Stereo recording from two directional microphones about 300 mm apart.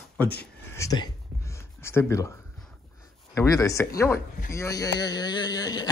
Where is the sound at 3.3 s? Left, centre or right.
Centre.